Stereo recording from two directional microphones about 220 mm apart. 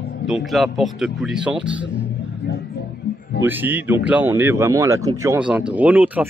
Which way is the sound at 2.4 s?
45° left (ahead or behind).